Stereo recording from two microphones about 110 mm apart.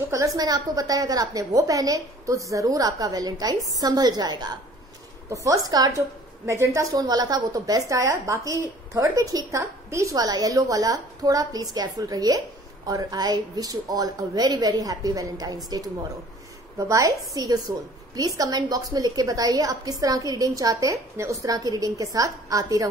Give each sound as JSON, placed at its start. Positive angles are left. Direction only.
{"t": 0.1, "sound": "a woman's voice", "side_deg": -30}